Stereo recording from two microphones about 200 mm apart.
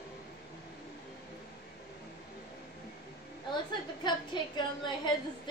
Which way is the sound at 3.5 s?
20° left (ahead or behind).